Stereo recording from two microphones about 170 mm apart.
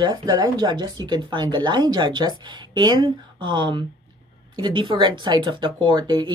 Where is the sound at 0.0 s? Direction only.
25° right (ahead or behind).